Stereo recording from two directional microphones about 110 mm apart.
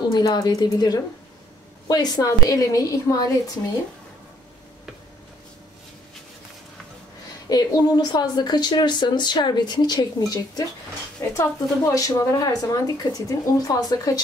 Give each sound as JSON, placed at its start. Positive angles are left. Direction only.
{"t": 0.1, "sound": "speech", "side_deg": 40}
{"t": 7.4, "sound": "speech", "side_deg": 35}